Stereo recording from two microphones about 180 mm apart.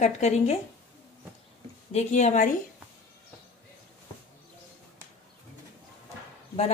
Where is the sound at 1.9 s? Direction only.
40° left (ahead or behind).